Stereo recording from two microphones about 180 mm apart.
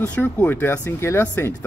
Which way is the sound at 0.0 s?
10° left (ahead or behind).